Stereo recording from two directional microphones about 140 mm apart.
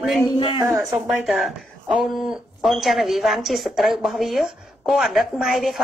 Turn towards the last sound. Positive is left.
turn(degrees=0)  # may be behind; listen again after turning